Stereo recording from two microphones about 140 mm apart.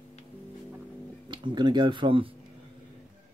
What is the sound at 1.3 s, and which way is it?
Speech, 35° right (ahead or behind).